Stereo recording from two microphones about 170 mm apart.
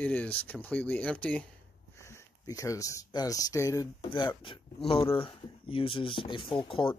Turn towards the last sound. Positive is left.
turn(degrees=30)  # may be behind; listen again after turning